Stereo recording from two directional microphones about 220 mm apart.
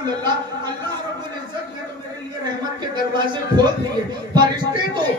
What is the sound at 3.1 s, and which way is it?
Speech, 20° right (ahead or behind).